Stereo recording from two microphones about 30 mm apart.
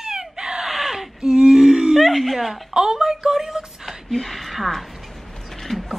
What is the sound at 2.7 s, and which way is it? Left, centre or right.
Speech, right.